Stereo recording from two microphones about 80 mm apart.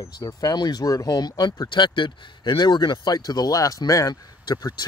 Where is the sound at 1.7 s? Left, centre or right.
Left.